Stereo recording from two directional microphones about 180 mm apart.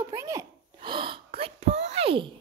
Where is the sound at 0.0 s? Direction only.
15° right (ahead or behind).